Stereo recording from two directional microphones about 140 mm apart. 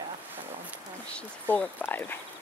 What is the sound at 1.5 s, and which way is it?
Speech, 10° left (ahead or behind).